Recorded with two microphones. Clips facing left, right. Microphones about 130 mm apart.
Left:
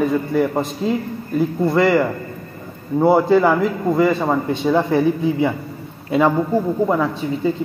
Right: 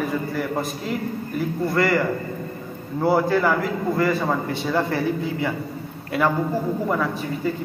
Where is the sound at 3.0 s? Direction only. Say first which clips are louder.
Left 5 dB; 20° left (ahead or behind).